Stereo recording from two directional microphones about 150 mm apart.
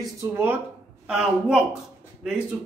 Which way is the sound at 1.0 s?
5° right (ahead or behind).